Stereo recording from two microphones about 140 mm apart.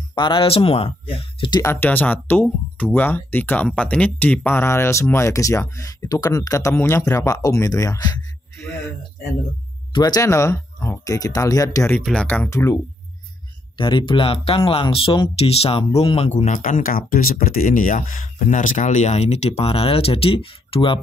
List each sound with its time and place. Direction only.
0.1 s speech: 35° left (ahead or behind)
1.6 s speech: 15° left (ahead or behind)
9.9 s speech: 25° left (ahead or behind)
12.0 s speech: 5° left (ahead or behind)
13.7 s speech: 35° left (ahead or behind)
16.3 s speech: 55° left (ahead or behind); by 21.0 s 40° left (ahead or behind)